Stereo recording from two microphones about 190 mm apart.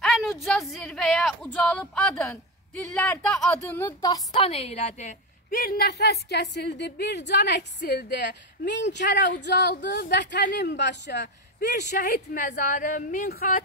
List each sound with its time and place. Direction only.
0.0 s a sound: centre (ahead or behind)
2.8 s speech: 10° left (ahead or behind)
4.0 s a woman's voice: 25° left (ahead or behind)
5.5 s a woman's voice: 50° left (ahead or behind)
12.4 s speech: 40° left (ahead or behind)